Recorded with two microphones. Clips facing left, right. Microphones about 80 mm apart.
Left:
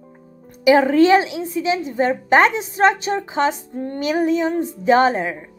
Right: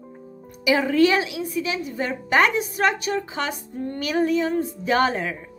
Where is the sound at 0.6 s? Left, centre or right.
Left.